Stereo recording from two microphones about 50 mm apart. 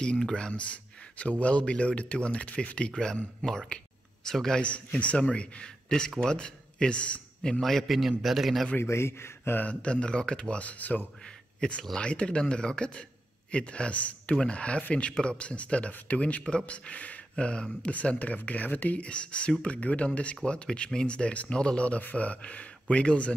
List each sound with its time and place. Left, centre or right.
0.0 s speech: centre
4.6 s speech: left
5.9 s speech: centre
7.6 s a man's voice: centre
8.8 s a man's voice: left
9.6 s speech: left
11.6 s speech: left